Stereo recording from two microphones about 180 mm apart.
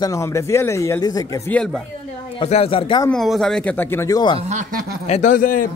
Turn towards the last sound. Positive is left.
turn(degrees=50)  # may be behind; listen again after turning